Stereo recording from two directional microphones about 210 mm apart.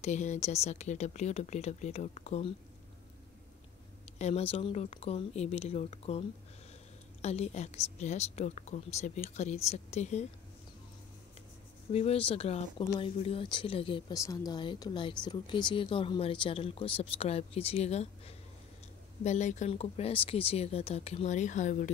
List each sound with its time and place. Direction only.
0.0 s a woman's voice: 35° left (ahead or behind)
4.2 s a woman's voice: 30° left (ahead or behind)
11.9 s a woman's voice: 30° left (ahead or behind)